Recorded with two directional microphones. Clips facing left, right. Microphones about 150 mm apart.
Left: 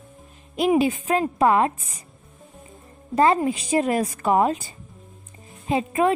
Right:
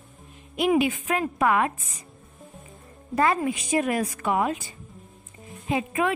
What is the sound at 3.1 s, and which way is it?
A woman's voice, 30° left (ahead or behind).